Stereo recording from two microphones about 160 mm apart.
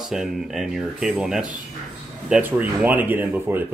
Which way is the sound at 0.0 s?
Centre (ahead or behind).